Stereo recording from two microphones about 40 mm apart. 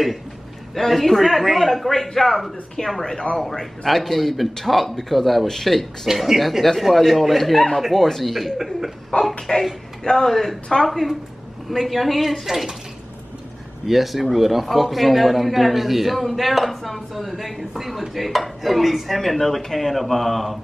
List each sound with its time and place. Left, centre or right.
0.7 s a man's voice: centre
6.0 s a man's voice: centre
9.1 s speech: left
10.0 s speech: centre
10.3 s a man's voice: centre
13.8 s a man's voice: centre